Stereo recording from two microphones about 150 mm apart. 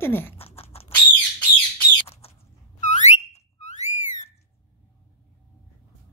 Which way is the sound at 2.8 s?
50° left (ahead or behind).